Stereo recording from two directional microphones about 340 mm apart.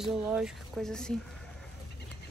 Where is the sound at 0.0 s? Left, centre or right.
Centre.